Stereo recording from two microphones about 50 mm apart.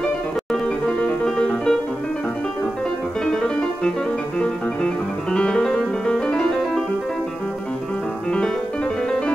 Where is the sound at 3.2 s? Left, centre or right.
Centre.